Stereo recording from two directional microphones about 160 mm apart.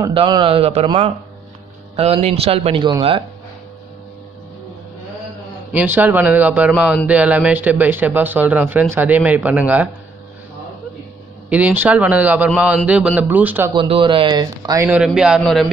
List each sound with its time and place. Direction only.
0.0 s a man's voice: 30° right (ahead or behind)
2.2 s a man's voice: 40° right (ahead or behind)
5.7 s speech: 10° right (ahead or behind)
11.4 s speech: 10° right (ahead or behind)
13.7 s speech: 30° right (ahead or behind)
14.9 s a man's voice: 5° right (ahead or behind)